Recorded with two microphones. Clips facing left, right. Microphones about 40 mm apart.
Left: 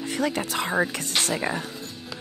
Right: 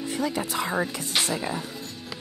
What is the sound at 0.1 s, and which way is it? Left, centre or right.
Music, left.